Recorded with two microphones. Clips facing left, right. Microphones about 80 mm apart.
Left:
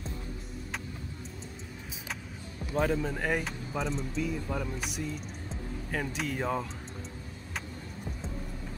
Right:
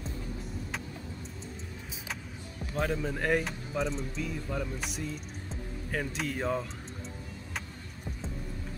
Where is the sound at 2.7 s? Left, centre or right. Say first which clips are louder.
Left 3 dB; centre.